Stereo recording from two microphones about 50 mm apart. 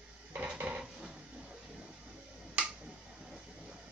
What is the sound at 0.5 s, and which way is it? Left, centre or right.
Dishes, right.